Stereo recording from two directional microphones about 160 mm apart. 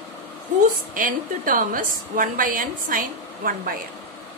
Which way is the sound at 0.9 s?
60° right (ahead or behind).